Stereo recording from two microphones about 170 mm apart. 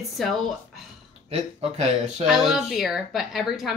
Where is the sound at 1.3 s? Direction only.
40° right (ahead or behind).